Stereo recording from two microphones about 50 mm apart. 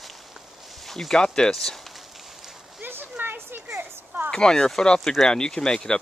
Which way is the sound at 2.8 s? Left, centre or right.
Right.